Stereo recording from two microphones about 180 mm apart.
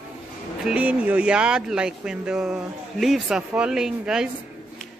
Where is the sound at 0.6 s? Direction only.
5° right (ahead or behind).